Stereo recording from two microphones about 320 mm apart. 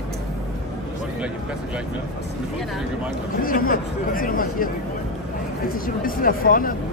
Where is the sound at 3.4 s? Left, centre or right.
Left.